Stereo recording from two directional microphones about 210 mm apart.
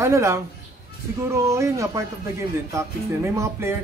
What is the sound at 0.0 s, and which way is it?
Speech, 15° right (ahead or behind).